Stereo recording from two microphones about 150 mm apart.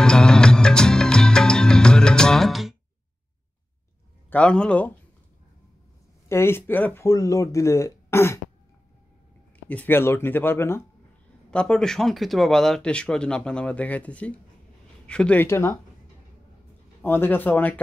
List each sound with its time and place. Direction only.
0.0 s music: 5° left (ahead or behind)
4.3 s speech: 5° left (ahead or behind)
6.2 s speech: 15° left (ahead or behind)
9.7 s speech: 10° left (ahead or behind)
11.5 s speech: 5° left (ahead or behind)
17.0 s speech: 15° left (ahead or behind)